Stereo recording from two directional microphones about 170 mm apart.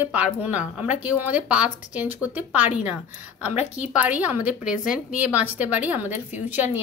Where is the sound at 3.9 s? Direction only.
10° right (ahead or behind).